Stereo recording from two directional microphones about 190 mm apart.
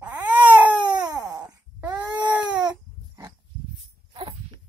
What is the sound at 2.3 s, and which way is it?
Baby cry, 5° right (ahead or behind).